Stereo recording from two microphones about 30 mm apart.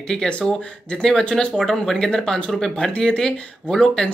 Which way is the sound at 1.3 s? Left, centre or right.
Left.